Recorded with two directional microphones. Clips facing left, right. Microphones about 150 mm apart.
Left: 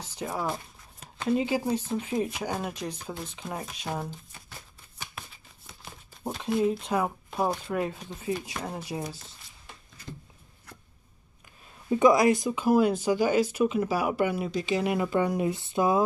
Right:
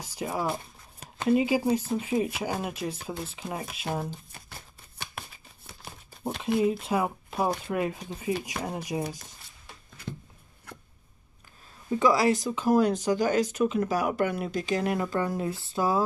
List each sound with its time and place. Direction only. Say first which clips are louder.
0.0 s speech: right 1 dB; 10° right (ahead or behind)
6.4 s speech: right 1 dB; 5° right (ahead or behind)
12.0 s speech: left 3 dB; 20° left (ahead or behind)
12.4 s speech: even; 10° left (ahead or behind)
14.5 s speech: even; 45° right (ahead or behind)
14.8 s speech: left 2 dB; 5° left (ahead or behind)
15.0 s speech: left 3 dB; 15° left (ahead or behind)